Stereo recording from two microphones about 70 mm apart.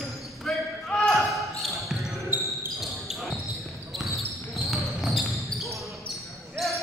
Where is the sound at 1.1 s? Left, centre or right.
Centre.